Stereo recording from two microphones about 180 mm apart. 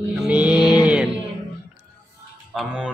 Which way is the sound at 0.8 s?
5° right (ahead or behind).